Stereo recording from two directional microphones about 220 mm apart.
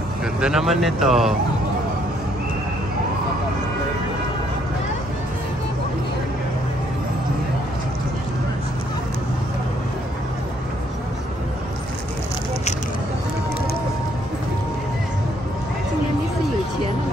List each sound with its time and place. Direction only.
0.4 s speech: 5° right (ahead or behind)